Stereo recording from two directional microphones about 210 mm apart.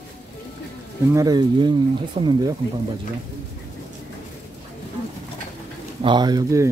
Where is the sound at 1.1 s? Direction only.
20° right (ahead or behind).